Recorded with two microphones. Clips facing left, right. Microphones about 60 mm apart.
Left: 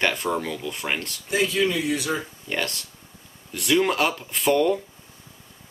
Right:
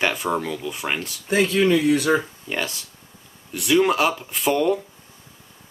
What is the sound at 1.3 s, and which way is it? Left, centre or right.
Speech, right.